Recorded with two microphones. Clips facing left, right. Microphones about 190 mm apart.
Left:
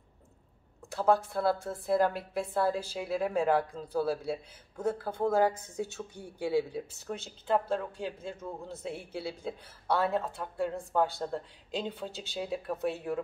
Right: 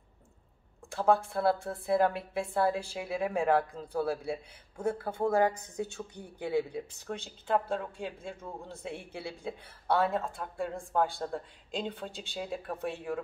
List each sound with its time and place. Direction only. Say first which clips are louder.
0.8 s speech: even; centre (ahead or behind)